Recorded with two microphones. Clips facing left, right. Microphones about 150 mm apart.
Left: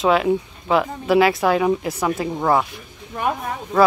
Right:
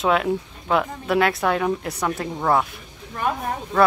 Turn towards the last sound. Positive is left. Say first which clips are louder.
# left 1 dB
turn(degrees=5)  # may be behind; listen again after turning